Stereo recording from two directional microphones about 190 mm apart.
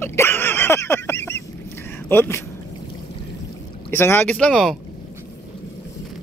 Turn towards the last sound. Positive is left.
turn(degrees=0)  # may be behind; listen again after turning